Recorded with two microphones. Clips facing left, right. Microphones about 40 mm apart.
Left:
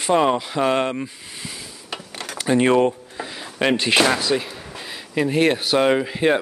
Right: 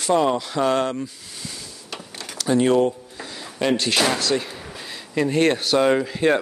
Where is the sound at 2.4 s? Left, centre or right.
Left.